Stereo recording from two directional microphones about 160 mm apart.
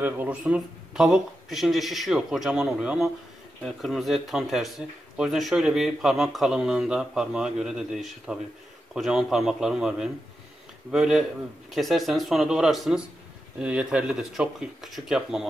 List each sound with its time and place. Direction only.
0.0 s speech: 10° right (ahead or behind)